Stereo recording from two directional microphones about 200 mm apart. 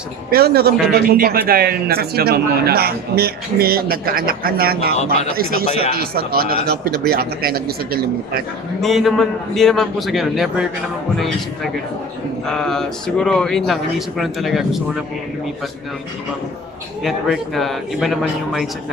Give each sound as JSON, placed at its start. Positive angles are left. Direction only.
{"t": 0.3, "sound": "speech", "side_deg": -50}
{"t": 8.8, "sound": "speech", "side_deg": 0}
{"t": 12.4, "sound": "speech", "side_deg": 5}
{"t": 17.0, "sound": "speech", "side_deg": 0}